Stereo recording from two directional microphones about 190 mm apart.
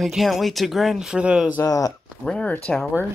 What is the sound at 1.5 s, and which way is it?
Speech, 20° left (ahead or behind).